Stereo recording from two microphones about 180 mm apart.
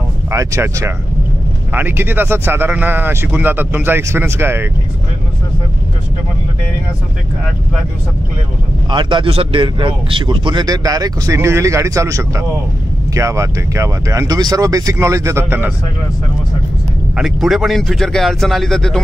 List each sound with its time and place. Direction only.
0.3 s speech: 15° right (ahead or behind)
8.9 s speech: 30° right (ahead or behind)
17.1 s speech: centre (ahead or behind)